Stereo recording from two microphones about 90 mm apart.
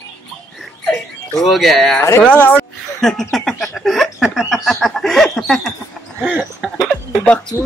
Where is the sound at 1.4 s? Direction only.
Centre (ahead or behind).